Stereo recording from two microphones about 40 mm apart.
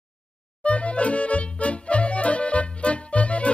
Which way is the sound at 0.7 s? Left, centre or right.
Left.